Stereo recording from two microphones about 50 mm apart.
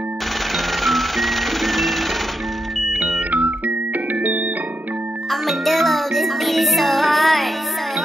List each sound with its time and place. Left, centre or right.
0.8 s music: centre
3.3 s music: right
5.3 s music: centre